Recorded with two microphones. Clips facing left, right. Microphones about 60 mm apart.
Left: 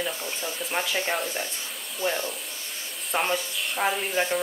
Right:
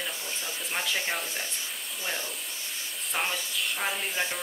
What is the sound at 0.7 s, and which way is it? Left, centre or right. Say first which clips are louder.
Speech: left 3 dB; centre.